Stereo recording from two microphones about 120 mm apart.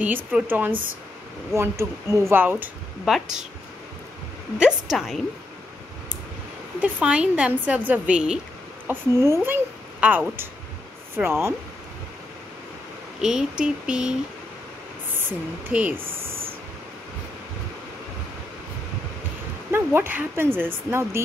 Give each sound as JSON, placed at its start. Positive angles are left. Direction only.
{"t": 0.0, "sound": "speech", "side_deg": -15}
{"t": 3.1, "sound": "a woman's voice", "side_deg": -5}
{"t": 4.6, "sound": "a woman's voice", "side_deg": -5}
{"t": 6.8, "sound": "speech", "side_deg": -10}
{"t": 8.8, "sound": "speech", "side_deg": -20}
{"t": 13.2, "sound": "a woman's voice", "side_deg": -5}
{"t": 15.1, "sound": "speech", "side_deg": -15}
{"t": 19.7, "sound": "speech", "side_deg": -20}